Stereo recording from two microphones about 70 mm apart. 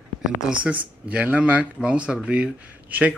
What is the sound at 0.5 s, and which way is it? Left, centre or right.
Speech, centre.